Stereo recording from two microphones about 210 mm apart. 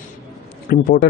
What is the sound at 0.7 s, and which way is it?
Speech, 45° left (ahead or behind).